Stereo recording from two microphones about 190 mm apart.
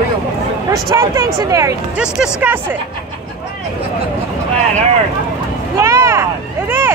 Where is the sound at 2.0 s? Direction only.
5° right (ahead or behind).